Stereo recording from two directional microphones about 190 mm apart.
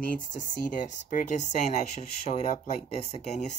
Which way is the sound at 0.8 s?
40° left (ahead or behind).